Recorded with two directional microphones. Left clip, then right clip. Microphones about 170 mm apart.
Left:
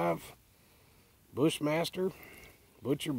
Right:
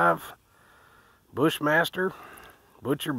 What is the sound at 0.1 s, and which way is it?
Speech, 5° right (ahead or behind).